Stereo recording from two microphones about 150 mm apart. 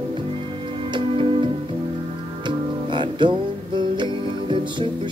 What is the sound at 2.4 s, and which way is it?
Music, 30° right (ahead or behind).